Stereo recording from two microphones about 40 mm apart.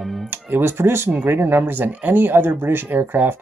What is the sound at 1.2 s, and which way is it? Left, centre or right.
Speech, right.